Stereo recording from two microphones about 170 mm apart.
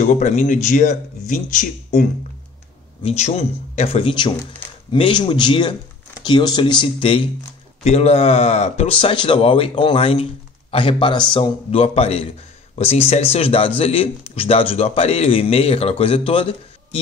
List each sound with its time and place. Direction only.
0.0 s speech: 45° left (ahead or behind)
3.0 s speech: 40° left (ahead or behind)